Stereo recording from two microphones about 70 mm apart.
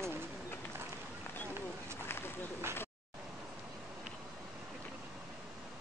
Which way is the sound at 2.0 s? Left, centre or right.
Left.